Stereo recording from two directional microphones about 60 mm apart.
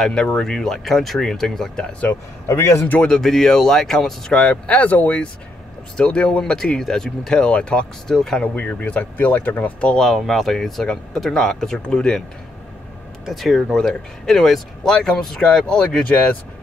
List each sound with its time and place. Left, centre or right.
0.0 s speech: centre
1.9 s speech: left
2.4 s a man's voice: left
3.2 s speech: centre
4.4 s speech: left
8.5 s speech: left
10.1 s speech: centre
13.3 s speech: centre